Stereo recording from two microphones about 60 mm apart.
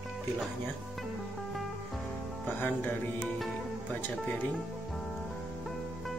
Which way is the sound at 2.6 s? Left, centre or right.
Left.